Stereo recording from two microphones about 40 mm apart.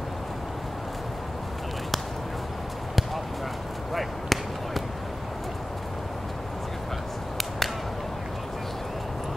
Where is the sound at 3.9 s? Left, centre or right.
Centre.